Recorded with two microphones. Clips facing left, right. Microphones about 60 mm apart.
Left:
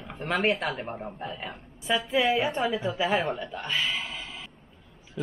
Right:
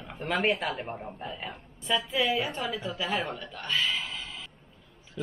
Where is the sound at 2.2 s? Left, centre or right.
Centre.